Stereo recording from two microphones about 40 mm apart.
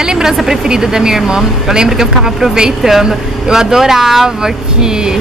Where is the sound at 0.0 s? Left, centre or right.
Centre.